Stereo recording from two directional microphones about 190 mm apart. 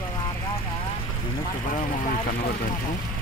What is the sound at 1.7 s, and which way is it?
Speech, 45° left (ahead or behind).